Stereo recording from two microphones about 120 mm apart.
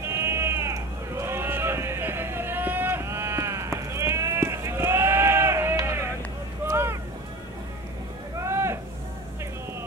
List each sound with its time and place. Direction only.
0.0 s sheep: 20° right (ahead or behind)
6.6 s boat: 20° right (ahead or behind)
8.4 s a sound: 20° right (ahead or behind)